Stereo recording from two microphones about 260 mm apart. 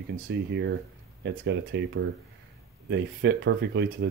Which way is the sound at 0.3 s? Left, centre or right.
Right.